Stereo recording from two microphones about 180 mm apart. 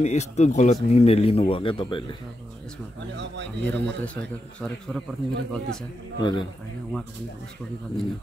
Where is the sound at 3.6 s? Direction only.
5° left (ahead or behind).